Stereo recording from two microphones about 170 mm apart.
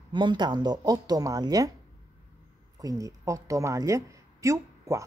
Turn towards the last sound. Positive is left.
turn(degrees=-20)  # may be behind; listen again after turning